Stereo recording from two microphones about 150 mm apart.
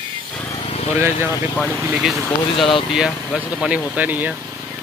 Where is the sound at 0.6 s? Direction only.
45° left (ahead or behind).